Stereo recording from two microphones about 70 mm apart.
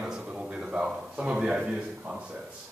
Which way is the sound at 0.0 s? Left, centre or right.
Centre.